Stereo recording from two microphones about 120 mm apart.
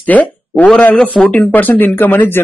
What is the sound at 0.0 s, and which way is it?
Speech, 15° left (ahead or behind).